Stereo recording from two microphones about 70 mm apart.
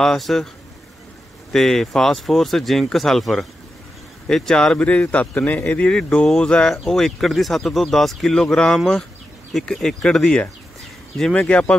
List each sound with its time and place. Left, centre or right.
0.0 s speech: centre
1.5 s a man's voice: centre